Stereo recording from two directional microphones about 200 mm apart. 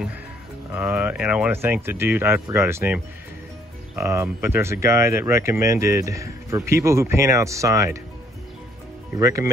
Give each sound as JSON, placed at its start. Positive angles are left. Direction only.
{"t": 0.7, "sound": "speech", "side_deg": -10}
{"t": 9.1, "sound": "speech", "side_deg": -15}